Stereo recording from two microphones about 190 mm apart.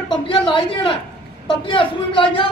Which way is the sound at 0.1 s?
25° left (ahead or behind).